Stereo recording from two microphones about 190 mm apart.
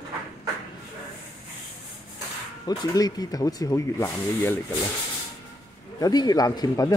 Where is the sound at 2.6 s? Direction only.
20° left (ahead or behind).